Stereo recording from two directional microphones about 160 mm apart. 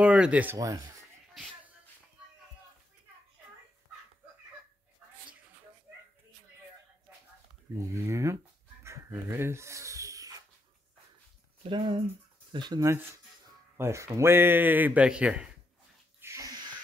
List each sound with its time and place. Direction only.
0.0 s speech: 5° right (ahead or behind)
7.7 s speech: 20° right (ahead or behind)
8.8 s dog: 15° right (ahead or behind)
11.6 s a man's voice: 30° right (ahead or behind); by 15.5 s 5° right (ahead or behind)
16.2 s wheeze: 15° right (ahead or behind)